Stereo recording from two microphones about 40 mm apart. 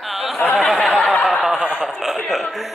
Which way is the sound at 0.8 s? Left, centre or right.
Centre.